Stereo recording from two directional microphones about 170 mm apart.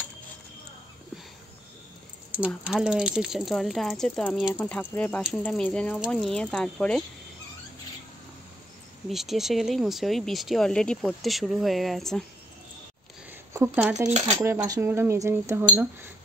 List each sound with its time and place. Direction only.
2.3 s speech: 10° right (ahead or behind)
9.1 s speech: centre (ahead or behind)
13.5 s speech: 15° right (ahead or behind)
14.0 s speech: 40° right (ahead or behind)
14.3 s speech: 15° right (ahead or behind)